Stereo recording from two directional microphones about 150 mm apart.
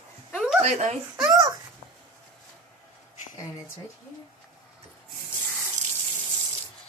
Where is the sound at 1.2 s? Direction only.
20° right (ahead or behind).